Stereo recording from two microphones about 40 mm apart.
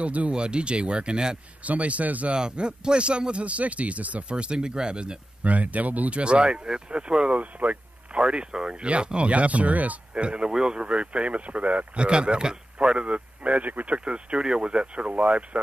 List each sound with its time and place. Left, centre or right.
0.0 s speech: right
0.3 s speech: right
1.6 s speech: right
2.3 s speech: right
4.3 s speech: right
5.4 s speech: right
7.3 s a sound: right
8.2 s speech: right
10.1 s speech: right
10.8 s speech: right